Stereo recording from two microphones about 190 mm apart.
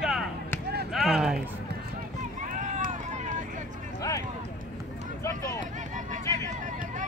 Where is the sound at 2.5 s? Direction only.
40° right (ahead or behind).